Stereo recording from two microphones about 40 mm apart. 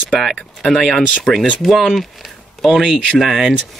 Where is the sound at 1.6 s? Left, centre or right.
Centre.